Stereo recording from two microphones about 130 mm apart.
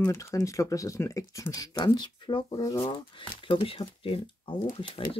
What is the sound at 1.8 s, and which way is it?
Speech, 35° left (ahead or behind).